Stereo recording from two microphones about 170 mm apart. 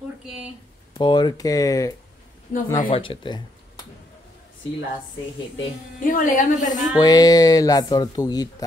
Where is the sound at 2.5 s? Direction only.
50° left (ahead or behind).